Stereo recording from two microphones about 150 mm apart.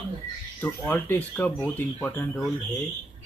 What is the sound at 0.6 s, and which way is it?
Speech, 15° left (ahead or behind).